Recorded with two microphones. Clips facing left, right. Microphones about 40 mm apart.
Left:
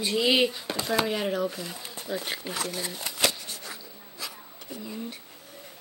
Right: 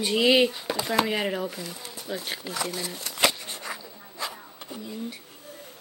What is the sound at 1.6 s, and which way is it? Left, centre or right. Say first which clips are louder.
Pigeon: even; left.